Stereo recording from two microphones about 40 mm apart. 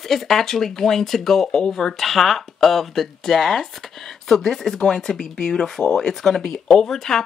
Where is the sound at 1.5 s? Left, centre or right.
Centre.